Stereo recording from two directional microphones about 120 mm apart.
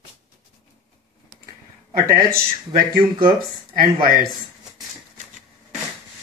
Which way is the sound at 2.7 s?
45° right (ahead or behind).